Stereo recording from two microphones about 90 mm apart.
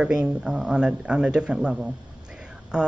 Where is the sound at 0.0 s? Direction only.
10° right (ahead or behind).